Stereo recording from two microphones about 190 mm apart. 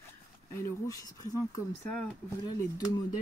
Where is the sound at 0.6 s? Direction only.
15° left (ahead or behind).